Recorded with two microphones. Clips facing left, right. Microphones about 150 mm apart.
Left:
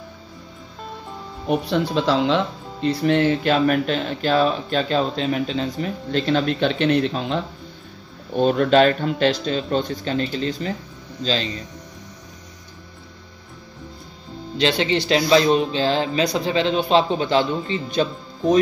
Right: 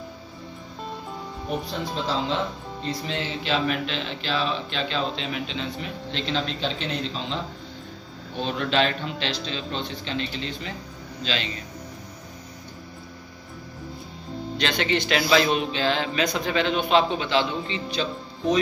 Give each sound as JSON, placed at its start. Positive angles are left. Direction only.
{"t": 1.5, "sound": "speech", "side_deg": 75}
{"t": 2.9, "sound": "speech", "side_deg": 60}
{"t": 8.4, "sound": "speech", "side_deg": 45}
{"t": 14.6, "sound": "speech", "side_deg": 30}